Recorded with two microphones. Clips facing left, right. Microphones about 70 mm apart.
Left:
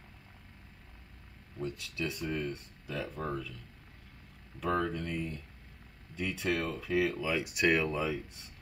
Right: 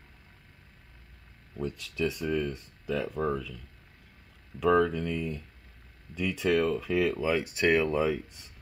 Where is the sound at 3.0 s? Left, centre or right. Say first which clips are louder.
Right 5 dB; right.